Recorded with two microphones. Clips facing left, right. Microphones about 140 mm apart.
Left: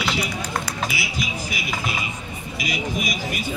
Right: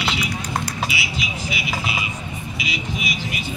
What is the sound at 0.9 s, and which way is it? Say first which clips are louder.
Vehicle: even; 40° left (ahead or behind).